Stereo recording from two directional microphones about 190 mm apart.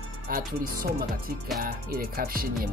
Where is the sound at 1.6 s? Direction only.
50° right (ahead or behind).